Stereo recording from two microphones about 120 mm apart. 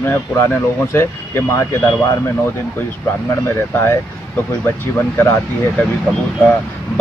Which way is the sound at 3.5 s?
20° left (ahead or behind).